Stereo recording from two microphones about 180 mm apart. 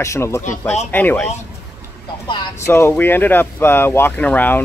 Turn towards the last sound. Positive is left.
turn(degrees=10)  # may be behind; listen again after turning